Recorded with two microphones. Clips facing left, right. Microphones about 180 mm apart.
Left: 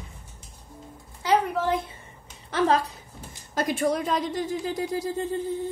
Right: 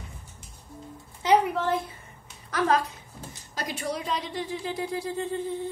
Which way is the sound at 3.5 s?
50° left (ahead or behind).